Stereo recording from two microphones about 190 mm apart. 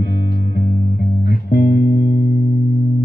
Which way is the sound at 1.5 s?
50° left (ahead or behind).